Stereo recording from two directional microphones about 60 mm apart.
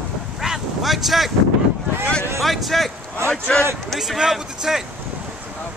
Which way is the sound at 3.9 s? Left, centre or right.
Centre.